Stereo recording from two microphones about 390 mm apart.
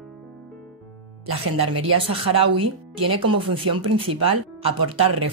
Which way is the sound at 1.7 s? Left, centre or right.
Right.